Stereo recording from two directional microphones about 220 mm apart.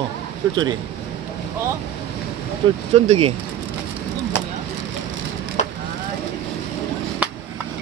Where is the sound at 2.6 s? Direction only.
20° right (ahead or behind).